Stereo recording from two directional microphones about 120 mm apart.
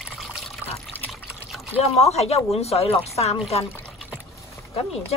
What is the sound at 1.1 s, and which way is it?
Water, centre (ahead or behind).